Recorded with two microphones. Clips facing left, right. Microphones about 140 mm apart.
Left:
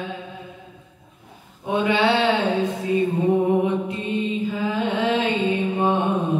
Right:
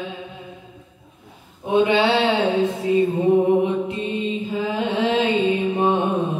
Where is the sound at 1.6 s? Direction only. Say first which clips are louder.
Right 3 dB; 25° right (ahead or behind).